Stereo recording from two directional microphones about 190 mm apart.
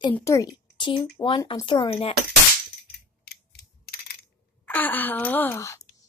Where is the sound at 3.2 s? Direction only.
55° left (ahead or behind).